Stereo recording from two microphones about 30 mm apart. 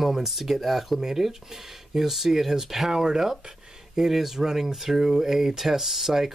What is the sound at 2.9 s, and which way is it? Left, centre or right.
Speech, centre.